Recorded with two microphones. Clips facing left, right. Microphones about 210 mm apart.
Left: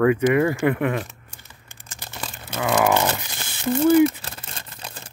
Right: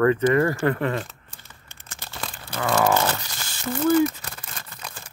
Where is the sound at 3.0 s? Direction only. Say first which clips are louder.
Left 1 dB; 15° left (ahead or behind).